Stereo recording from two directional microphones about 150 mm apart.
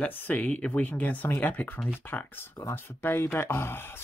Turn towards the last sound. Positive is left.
turn(degrees=15)  # may be behind; listen again after turning